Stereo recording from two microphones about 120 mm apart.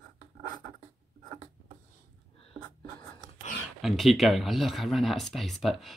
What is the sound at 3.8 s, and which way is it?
Speech, centre (ahead or behind).